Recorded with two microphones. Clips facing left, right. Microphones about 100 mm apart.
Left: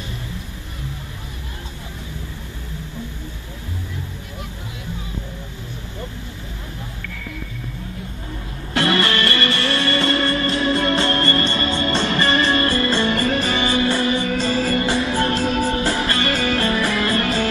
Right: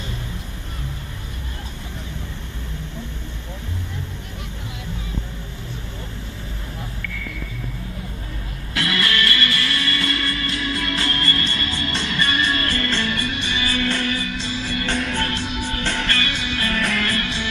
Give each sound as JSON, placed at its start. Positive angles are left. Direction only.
{"t": 8.7, "sound": "music", "side_deg": 35}
{"t": 13.7, "sound": "music", "side_deg": 25}
{"t": 14.2, "sound": "music", "side_deg": 45}
{"t": 14.9, "sound": "music", "side_deg": 10}
{"t": 15.1, "sound": "music", "side_deg": 35}